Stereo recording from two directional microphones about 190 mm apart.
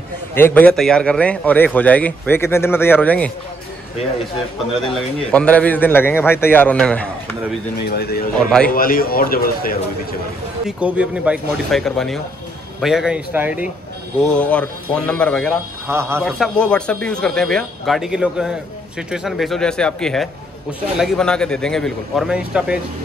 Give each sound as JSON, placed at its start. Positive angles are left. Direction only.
{"t": 0.3, "sound": "speech", "side_deg": 10}
{"t": 5.3, "sound": "speech", "side_deg": 5}
{"t": 7.8, "sound": "a man's voice", "side_deg": 55}
{"t": 10.8, "sound": "a man's voice", "side_deg": -5}
{"t": 14.2, "sound": "a man's voice", "side_deg": 5}
{"t": 15.9, "sound": "a man's voice", "side_deg": -10}
{"t": 16.2, "sound": "a man's voice", "side_deg": 5}